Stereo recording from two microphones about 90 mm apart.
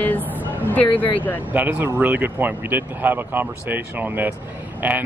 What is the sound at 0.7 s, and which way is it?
Speech, 20° left (ahead or behind).